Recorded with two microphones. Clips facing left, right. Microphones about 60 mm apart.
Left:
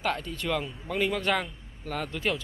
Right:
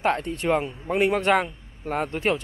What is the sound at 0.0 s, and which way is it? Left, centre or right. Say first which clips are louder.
Speech: right 7 dB; right.